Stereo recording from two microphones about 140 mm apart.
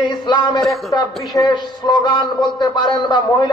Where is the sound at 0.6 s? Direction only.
Centre (ahead or behind).